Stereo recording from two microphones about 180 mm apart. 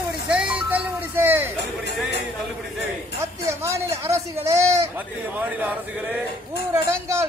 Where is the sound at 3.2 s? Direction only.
15° right (ahead or behind).